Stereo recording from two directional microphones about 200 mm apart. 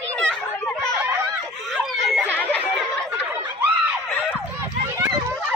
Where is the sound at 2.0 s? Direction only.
5° right (ahead or behind).